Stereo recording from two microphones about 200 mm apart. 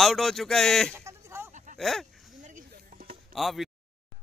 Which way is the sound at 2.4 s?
45° right (ahead or behind).